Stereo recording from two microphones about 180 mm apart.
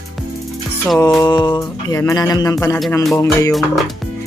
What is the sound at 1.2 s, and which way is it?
Music, 20° left (ahead or behind).